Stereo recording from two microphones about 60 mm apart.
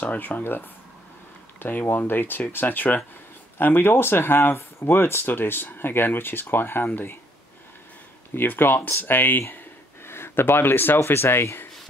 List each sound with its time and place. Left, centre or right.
0.0 s speech: left
8.4 s speech: left